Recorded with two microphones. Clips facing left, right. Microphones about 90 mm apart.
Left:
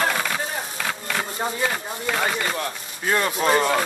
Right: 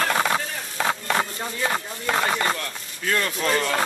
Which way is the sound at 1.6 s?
30° right (ahead or behind).